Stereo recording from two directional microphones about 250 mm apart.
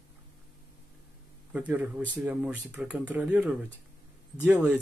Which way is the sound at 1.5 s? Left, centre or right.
Centre.